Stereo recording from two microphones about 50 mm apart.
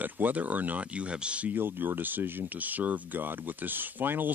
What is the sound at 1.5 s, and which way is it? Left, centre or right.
Speech, right.